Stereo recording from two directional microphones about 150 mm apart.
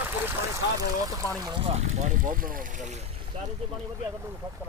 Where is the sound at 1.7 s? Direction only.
50° right (ahead or behind).